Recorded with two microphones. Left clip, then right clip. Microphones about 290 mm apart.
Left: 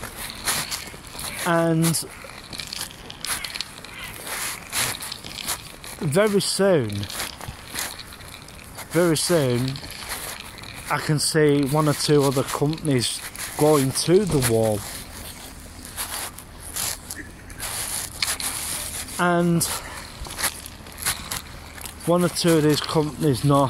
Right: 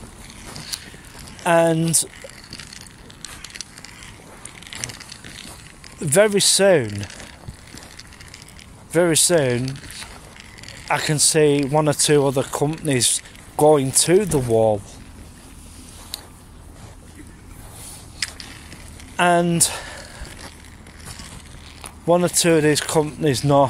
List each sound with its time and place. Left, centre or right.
1.4 s speech: right
3.2 s a sound: centre
4.3 s a sound: left
6.1 s speech: right
8.9 s speech: right
10.9 s speech: right
19.1 s speech: right
22.0 s speech: right